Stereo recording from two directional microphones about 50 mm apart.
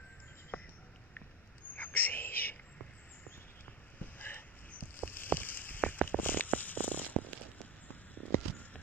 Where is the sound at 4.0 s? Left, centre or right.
Left.